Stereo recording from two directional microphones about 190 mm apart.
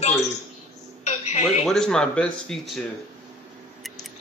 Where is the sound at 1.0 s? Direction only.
35° left (ahead or behind).